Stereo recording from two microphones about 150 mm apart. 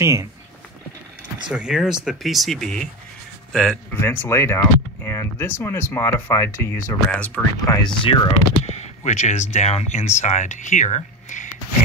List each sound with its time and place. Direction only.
0.0 s speech: 20° right (ahead or behind)
1.5 s speech: 5° right (ahead or behind)
7.6 s speech: 25° left (ahead or behind); by 11.4 s 55° left (ahead or behind)